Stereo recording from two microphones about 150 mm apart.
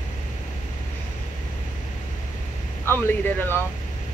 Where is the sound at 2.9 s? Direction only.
15° left (ahead or behind).